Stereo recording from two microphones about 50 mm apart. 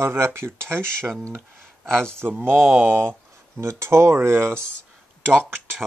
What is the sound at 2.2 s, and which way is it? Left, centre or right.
Speech, right.